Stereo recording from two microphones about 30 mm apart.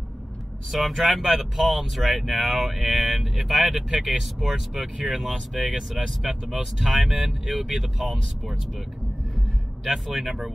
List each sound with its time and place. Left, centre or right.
0.7 s speech: centre
1.2 s speech: centre
1.6 s speech: centre
9.8 s speech: centre